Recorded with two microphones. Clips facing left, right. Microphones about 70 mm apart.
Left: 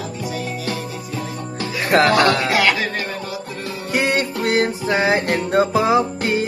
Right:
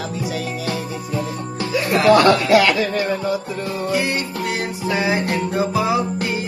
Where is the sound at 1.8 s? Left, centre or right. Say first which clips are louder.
Right 1 dB; left.